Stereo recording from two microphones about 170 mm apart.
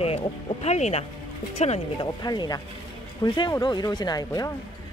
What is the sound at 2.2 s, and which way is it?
Speech, 25° left (ahead or behind).